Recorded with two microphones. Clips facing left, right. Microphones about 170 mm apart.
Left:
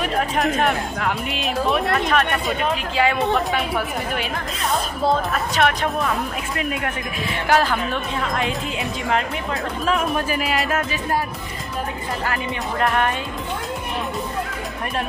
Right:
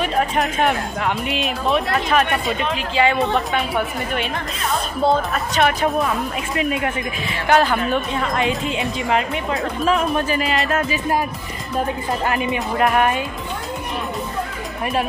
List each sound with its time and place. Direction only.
0.0 s a woman's voice: centre (ahead or behind)
12.7 s speech: 10° right (ahead or behind)